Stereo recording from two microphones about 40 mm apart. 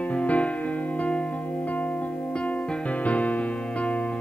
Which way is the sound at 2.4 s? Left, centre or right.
Left.